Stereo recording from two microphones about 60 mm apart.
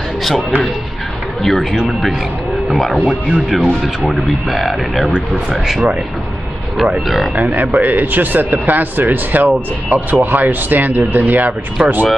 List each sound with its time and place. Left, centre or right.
1.4 s speech: centre
7.3 s speech: right